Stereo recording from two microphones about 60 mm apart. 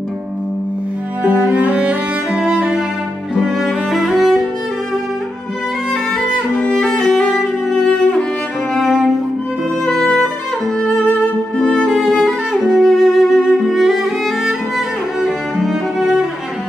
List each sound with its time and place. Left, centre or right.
1.2 s music: right
3.3 s music: centre
6.7 s music: centre
8.7 s cello: centre
11.6 s music: centre
12.0 s music: centre
15.1 s cello: centre